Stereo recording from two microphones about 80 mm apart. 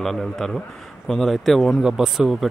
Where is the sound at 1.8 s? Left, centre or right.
Centre.